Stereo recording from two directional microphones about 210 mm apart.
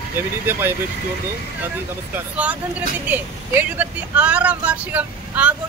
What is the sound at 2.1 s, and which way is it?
A woman's voice, 5° right (ahead or behind).